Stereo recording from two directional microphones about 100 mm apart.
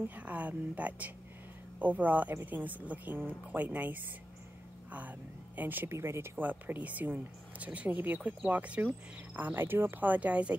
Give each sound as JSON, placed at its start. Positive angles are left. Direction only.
{"t": 0.1, "sound": "speech", "side_deg": -15}
{"t": 5.6, "sound": "speech", "side_deg": -20}